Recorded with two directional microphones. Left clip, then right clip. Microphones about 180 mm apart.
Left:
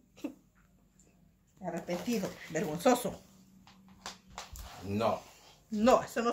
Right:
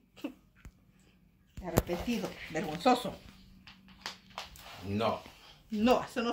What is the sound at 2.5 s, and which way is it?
Speech, 50° left (ahead or behind).